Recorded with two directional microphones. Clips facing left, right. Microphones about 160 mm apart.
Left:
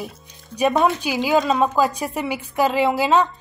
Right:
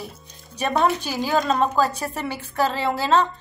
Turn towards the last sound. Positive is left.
turn(degrees=10)  # may be behind; listen again after turning